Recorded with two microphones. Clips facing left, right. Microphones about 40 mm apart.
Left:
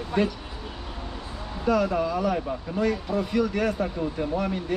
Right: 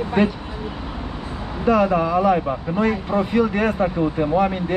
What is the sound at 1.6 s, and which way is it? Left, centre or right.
Speech, right.